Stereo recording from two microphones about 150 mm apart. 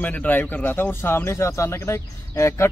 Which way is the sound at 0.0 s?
10° left (ahead or behind).